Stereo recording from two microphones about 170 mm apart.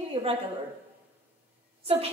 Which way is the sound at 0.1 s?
35° right (ahead or behind).